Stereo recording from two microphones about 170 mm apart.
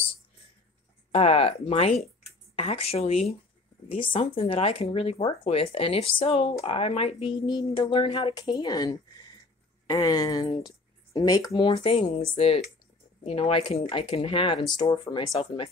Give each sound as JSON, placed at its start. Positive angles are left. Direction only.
{"t": 1.1, "sound": "speech", "side_deg": 35}